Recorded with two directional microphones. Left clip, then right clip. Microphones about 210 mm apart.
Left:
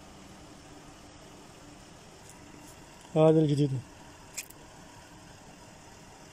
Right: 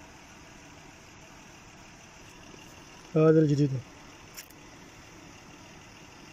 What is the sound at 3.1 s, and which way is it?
Speech, 10° left (ahead or behind).